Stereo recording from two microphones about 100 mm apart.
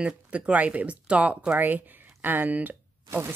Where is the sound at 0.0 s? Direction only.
15° right (ahead or behind).